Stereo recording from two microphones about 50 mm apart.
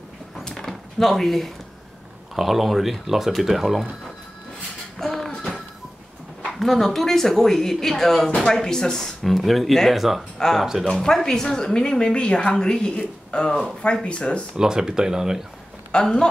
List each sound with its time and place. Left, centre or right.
0.4 s a sound: centre
2.3 s speech: centre
4.9 s a sound: centre
6.6 s speech: centre; by 14.4 s left
14.6 s speech: centre
15.9 s speech: centre